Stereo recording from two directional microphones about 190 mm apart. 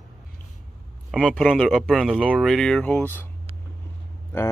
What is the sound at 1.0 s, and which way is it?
Speech, centre (ahead or behind).